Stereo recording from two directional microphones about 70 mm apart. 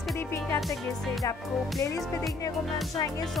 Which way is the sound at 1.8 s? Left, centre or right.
Left.